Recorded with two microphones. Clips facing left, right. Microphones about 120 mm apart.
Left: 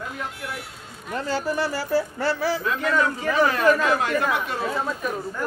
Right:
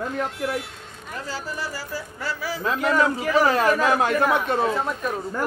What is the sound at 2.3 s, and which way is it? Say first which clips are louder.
Speech: left 4 dB; 30° left (ahead or behind).